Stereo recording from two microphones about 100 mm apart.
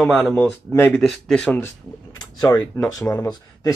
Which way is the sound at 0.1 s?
10° left (ahead or behind).